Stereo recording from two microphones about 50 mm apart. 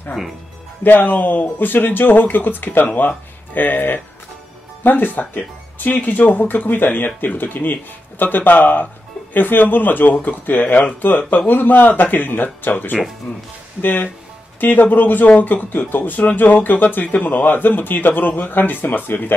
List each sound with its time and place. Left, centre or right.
0.8 s speech: left